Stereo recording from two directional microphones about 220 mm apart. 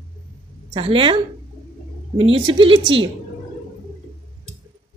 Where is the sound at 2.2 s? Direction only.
25° right (ahead or behind).